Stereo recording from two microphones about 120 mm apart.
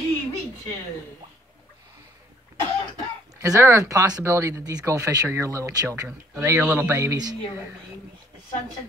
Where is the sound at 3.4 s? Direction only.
25° right (ahead or behind).